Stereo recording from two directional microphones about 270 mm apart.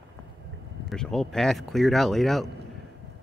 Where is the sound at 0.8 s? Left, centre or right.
Centre.